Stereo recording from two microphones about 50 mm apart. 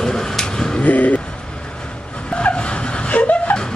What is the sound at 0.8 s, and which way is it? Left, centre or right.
Speech, left.